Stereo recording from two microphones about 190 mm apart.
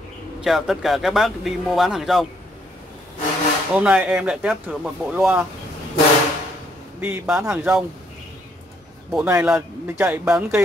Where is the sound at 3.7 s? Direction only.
5° right (ahead or behind).